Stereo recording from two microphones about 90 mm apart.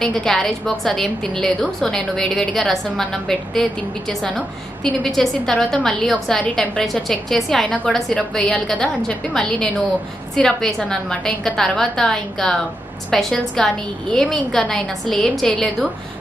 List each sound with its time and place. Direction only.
0.0 s a woman's voice: 5° left (ahead or behind)